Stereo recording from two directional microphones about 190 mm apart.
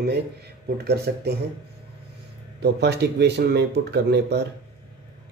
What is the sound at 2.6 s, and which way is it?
Speech, 60° right (ahead or behind).